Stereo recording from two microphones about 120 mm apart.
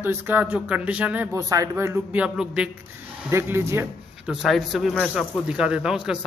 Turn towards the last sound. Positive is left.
turn(degrees=-5)  # may be behind; listen again after turning